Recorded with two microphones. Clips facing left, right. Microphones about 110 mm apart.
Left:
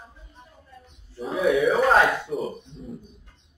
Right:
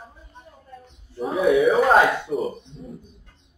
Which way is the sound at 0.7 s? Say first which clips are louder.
Right 6 dB; 50° right (ahead or behind).